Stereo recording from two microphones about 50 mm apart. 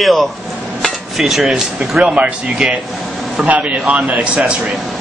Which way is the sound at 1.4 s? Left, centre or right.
Centre.